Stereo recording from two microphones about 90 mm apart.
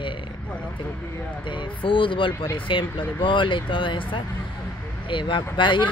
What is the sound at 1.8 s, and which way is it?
Speech, 70° left (ahead or behind).